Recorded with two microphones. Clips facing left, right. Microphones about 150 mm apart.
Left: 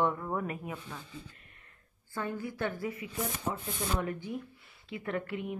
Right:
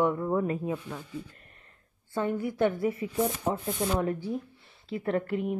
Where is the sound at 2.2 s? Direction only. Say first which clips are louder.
Right 8 dB; 20° right (ahead or behind).